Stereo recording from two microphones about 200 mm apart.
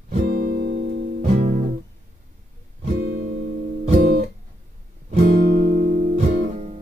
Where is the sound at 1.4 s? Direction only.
35° right (ahead or behind).